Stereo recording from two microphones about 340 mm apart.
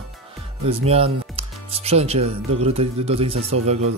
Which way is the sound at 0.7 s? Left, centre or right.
Centre.